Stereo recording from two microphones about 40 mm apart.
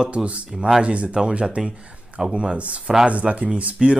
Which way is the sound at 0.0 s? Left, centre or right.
Right.